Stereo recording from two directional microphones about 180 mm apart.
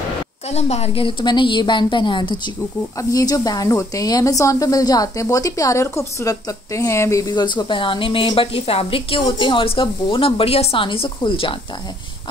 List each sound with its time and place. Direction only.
0.5 s speech: 35° left (ahead or behind)